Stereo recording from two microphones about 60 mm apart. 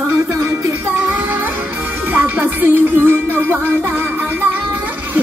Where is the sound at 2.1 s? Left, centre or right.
Right.